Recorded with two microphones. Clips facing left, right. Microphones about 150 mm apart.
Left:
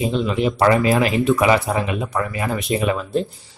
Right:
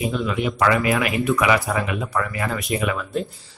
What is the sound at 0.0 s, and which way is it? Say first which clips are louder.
Speech: left 3 dB; 25° left (ahead or behind).